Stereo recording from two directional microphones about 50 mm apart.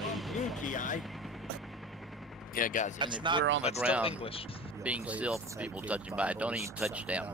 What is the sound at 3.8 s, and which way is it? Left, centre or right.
Speech, right.